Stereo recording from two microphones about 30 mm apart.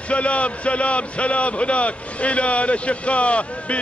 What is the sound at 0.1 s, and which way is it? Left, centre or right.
A man's voice, left.